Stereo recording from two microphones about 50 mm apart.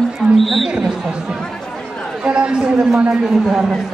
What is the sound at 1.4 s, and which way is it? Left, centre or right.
Chatter, centre.